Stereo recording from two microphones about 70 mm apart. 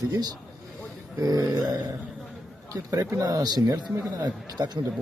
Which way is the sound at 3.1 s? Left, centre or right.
Right.